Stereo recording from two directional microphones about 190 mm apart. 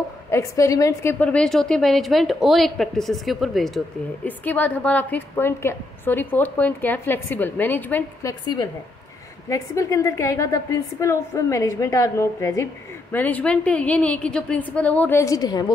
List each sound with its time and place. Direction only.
0.3 s a woman's voice: 15° left (ahead or behind)